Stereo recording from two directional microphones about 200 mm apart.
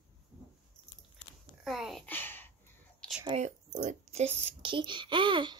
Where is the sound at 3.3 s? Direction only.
30° right (ahead or behind).